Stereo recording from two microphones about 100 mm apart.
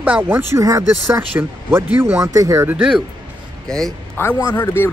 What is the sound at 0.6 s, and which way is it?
Speech, 35° right (ahead or behind).